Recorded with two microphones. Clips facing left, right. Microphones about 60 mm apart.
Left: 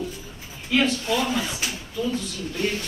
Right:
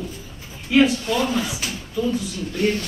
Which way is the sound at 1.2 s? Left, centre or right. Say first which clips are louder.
Right 3 dB; centre.